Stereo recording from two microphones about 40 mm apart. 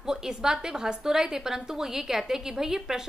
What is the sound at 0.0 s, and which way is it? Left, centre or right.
A woman's voice, centre.